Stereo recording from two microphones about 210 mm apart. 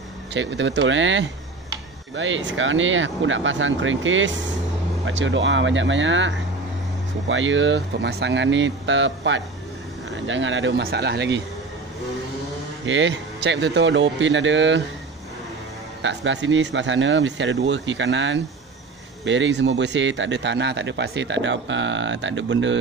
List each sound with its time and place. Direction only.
0.3 s speech: 60° right (ahead or behind)
12.8 s speech: 60° right (ahead or behind)
16.0 s speech: 60° right (ahead or behind)